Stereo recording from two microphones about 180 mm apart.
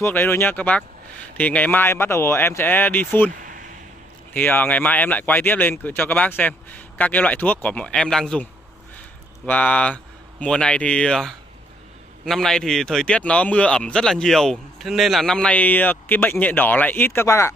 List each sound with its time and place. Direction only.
0.0 s speech: 10° left (ahead or behind)
3.3 s a sound: 50° right (ahead or behind)
4.3 s speech: 10° left (ahead or behind)
9.5 s speech: 5° left (ahead or behind)